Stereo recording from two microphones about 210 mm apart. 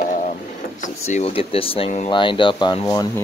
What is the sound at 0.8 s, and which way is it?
Speech, 35° left (ahead or behind).